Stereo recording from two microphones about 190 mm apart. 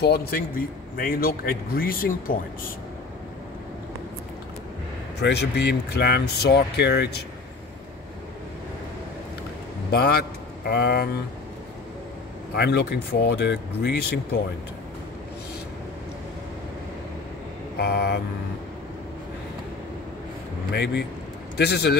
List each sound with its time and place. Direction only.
0.0 s a man's voice: 55° left (ahead or behind)
5.2 s speech: 60° left (ahead or behind)
9.8 s speech: 55° left (ahead or behind)
12.5 s speech: 60° left (ahead or behind)
17.7 s speech: 60° left (ahead or behind)
20.7 s speech: 60° left (ahead or behind)